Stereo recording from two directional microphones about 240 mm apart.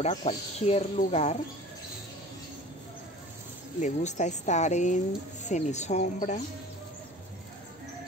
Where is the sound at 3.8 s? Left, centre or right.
Left.